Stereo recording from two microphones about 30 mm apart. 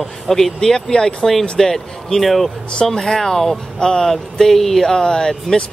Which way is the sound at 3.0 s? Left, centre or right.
Centre.